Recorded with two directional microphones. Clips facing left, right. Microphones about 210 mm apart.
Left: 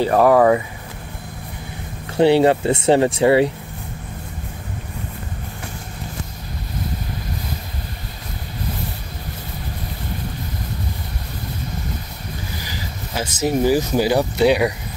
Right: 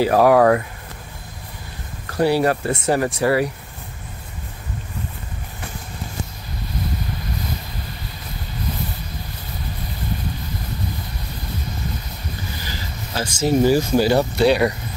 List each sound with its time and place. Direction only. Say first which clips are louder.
0.0 s speech: even; 5° right (ahead or behind)
2.0 s speech: left 4 dB; 25° left (ahead or behind)
12.6 s speech: left 1 dB; 20° left (ahead or behind)